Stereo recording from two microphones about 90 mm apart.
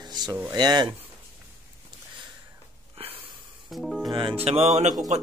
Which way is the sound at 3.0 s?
90° right.